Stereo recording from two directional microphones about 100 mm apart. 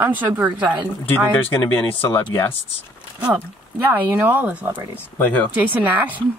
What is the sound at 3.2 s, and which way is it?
Speech, 15° right (ahead or behind).